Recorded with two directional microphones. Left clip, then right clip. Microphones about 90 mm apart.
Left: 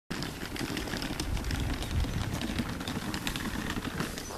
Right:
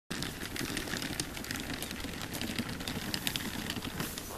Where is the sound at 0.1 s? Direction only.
40° right (ahead or behind).